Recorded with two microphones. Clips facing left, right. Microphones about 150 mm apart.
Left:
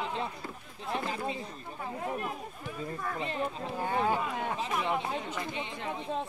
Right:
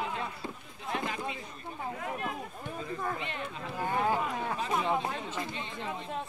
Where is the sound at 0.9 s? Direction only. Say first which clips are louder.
Left 1 dB; 30° left (ahead or behind).